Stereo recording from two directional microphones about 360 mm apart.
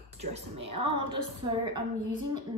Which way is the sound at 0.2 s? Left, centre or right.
Centre.